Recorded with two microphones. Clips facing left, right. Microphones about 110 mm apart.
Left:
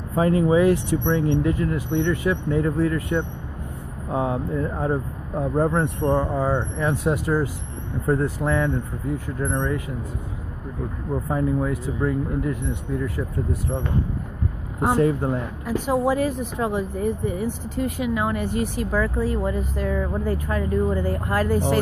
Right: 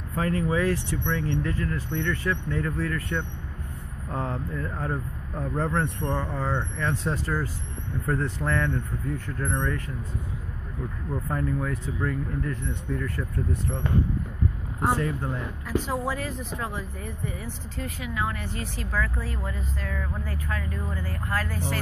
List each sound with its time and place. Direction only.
0.1 s speech: 15° left (ahead or behind)
11.2 s speech: 10° left (ahead or behind)
14.8 s speech: 15° left (ahead or behind)